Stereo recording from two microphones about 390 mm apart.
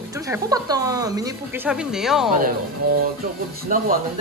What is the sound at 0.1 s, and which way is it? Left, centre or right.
Speech, centre.